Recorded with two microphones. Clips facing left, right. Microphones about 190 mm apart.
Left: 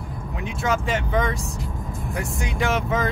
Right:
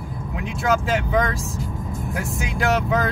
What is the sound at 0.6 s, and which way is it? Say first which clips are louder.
Speech: right 3 dB; centre (ahead or behind).